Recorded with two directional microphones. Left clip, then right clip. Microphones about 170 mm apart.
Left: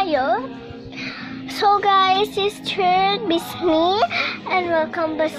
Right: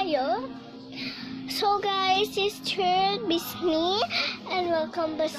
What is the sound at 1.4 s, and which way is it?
A woman's voice, 15° right (ahead or behind).